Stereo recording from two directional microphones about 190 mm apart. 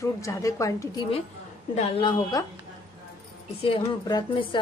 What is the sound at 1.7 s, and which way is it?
Speech, 30° left (ahead or behind).